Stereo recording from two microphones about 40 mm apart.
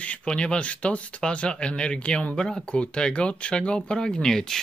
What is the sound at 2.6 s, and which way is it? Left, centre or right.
Speech, left.